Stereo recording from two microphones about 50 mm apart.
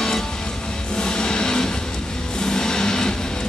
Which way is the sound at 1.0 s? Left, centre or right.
Centre.